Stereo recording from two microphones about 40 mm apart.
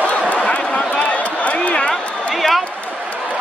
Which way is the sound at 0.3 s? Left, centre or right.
Left.